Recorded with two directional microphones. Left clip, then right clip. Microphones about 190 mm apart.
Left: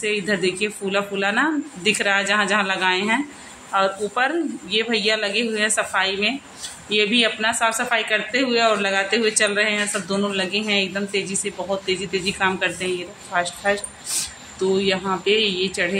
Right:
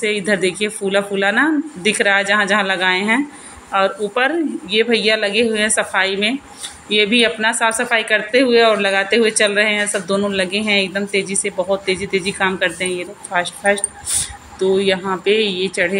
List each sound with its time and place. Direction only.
0.0 s a woman's voice: 15° right (ahead or behind)